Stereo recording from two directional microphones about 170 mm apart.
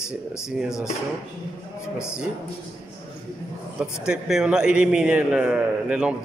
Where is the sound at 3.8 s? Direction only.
5° right (ahead or behind).